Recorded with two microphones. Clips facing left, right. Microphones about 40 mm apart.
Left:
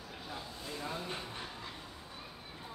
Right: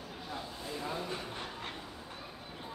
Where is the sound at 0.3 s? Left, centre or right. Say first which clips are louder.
Right 3 dB; centre.